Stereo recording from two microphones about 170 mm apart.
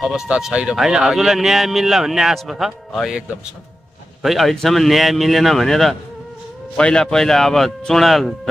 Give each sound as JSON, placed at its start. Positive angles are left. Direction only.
{"t": 0.0, "sound": "speech", "side_deg": -5}